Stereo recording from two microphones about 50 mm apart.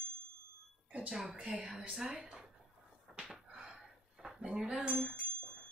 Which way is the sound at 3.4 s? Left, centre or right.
Right.